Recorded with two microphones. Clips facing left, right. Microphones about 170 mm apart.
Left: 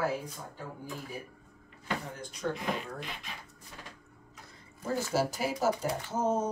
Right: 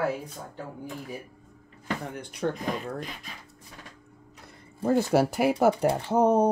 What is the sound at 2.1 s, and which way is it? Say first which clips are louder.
Speech: right 6 dB; 65° right (ahead or behind).